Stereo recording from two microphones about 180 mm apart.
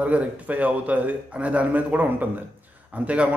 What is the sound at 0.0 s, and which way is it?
Speech, 10° right (ahead or behind).